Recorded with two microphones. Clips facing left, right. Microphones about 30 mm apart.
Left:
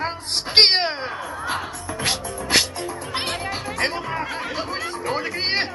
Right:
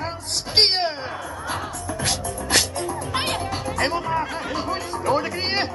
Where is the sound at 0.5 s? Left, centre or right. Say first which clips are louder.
Left 3 dB; left.